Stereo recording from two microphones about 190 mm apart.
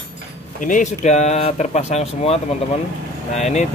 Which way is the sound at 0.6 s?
40° left (ahead or behind).